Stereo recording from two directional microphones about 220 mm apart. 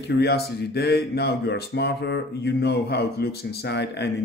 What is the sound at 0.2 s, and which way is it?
A man's voice, 45° left (ahead or behind).